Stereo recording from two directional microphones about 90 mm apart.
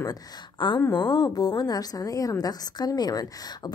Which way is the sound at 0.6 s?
60° left (ahead or behind).